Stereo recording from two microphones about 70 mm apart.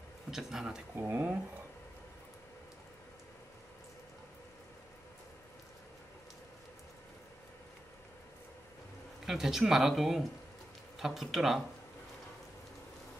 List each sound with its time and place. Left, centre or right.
0.3 s speech: centre
0.9 s speech: right
9.2 s speech: centre